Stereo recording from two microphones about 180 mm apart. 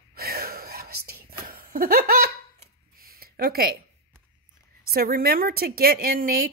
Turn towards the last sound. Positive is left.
turn(degrees=-55)  # may be behind; listen again after turning